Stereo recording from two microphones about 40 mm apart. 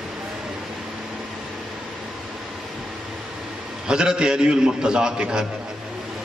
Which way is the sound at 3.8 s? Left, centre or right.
Right.